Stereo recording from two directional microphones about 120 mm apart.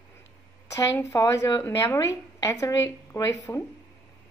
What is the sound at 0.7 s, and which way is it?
A woman's voice, 25° left (ahead or behind).